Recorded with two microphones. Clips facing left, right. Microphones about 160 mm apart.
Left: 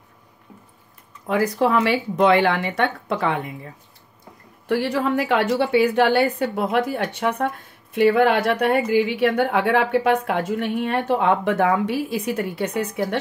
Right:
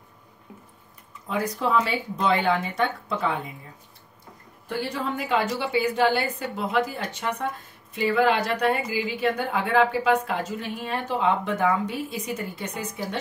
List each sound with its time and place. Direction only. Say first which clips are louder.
1.2 s speech: left 7 dB; 70° left (ahead or behind)
4.6 s a woman's voice: left 8 dB; 70° left (ahead or behind)